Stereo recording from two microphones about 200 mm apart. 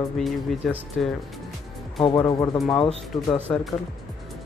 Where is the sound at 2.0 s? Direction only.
20° left (ahead or behind).